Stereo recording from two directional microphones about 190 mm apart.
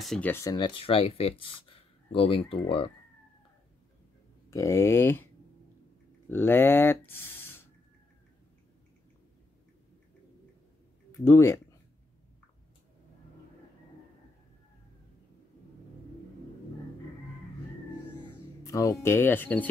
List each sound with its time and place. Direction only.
0.0 s speech: centre (ahead or behind)
0.3 s speech: 20° left (ahead or behind)
4.5 s speech: 15° left (ahead or behind)
7.1 s a sound: 10° left (ahead or behind)
11.1 s speech: 15° left (ahead or behind)
18.6 s speech: 15° left (ahead or behind)